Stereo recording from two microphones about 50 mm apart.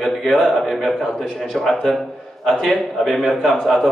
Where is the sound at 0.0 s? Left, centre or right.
Centre.